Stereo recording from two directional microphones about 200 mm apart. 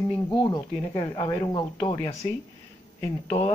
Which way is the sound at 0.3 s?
20° left (ahead or behind).